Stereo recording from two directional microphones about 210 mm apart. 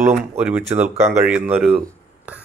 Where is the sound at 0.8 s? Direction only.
5° right (ahead or behind).